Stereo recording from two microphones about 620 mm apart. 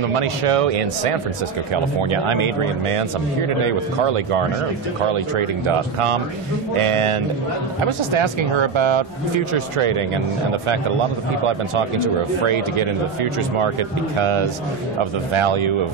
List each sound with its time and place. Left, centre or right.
0.1 s speech: right
1.7 s speech: right
12.4 s speech: right